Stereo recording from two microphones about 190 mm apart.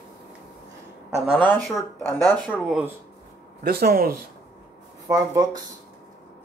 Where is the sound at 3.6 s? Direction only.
55° right (ahead or behind).